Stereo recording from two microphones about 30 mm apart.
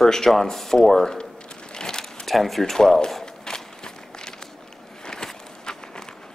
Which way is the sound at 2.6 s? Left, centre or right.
Centre.